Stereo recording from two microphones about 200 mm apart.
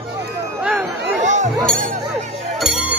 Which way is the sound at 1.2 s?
35° right (ahead or behind).